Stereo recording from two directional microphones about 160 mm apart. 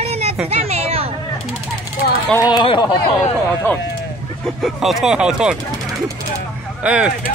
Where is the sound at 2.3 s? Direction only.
25° left (ahead or behind).